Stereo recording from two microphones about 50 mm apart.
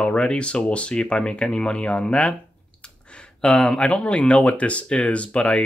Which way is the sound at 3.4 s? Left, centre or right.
Centre.